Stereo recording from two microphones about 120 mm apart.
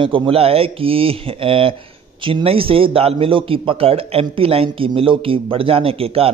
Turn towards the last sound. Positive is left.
turn(degrees=-50)  # may be behind; listen again after turning